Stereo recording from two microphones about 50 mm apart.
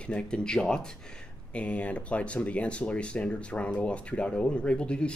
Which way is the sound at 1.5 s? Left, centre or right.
Left.